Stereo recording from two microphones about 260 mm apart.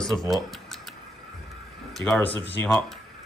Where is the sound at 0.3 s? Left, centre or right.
Centre.